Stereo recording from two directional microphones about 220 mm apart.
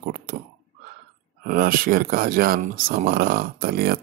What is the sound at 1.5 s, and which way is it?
Speech, 40° right (ahead or behind).